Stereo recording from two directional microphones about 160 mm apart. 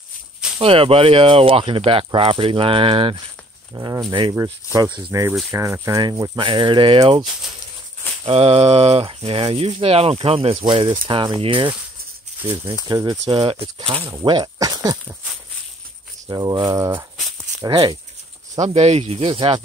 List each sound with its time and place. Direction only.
0.6 s speech: 35° right (ahead or behind)
3.7 s speech: 20° right (ahead or behind)
8.3 s speech: 40° right (ahead or behind)
12.4 s speech: 15° right (ahead or behind)
16.3 s speech: 25° right (ahead or behind)
17.6 s speech: 30° right (ahead or behind)
18.6 s speech: 45° right (ahead or behind)